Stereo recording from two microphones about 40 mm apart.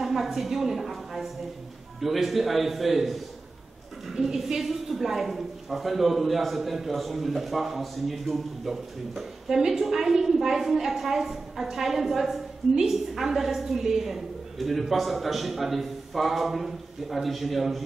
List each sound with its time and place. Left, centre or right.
0.0 s a woman's voice: centre